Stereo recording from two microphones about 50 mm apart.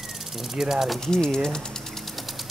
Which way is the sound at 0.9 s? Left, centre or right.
Centre.